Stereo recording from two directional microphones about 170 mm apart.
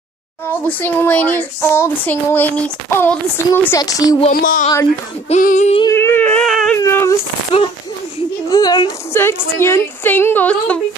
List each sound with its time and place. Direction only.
0.5 s a child's voice: 10° left (ahead or behind)
4.3 s speech: 55° left (ahead or behind)
5.3 s child singing: 45° left (ahead or behind)
5.9 s a child's voice: 10° left (ahead or behind)
6.8 s a child's voice: 15° left (ahead or behind)
8.5 s a child's voice: 25° left (ahead or behind)